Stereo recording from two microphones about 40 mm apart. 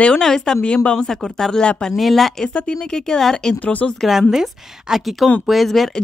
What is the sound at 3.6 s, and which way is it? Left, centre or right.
Speech, left.